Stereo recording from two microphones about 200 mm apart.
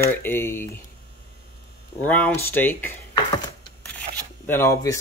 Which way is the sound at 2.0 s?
10° left (ahead or behind).